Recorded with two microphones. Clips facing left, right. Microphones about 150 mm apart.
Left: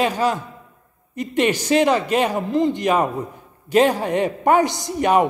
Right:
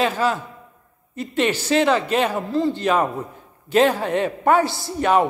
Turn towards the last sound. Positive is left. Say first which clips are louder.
# left 1 dB
turn(degrees=15)  # may be behind; listen again after turning